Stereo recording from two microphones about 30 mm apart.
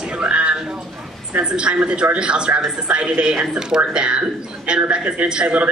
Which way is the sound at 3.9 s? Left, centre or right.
Right.